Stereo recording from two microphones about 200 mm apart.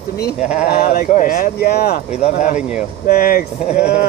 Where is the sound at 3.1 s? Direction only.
50° left (ahead or behind).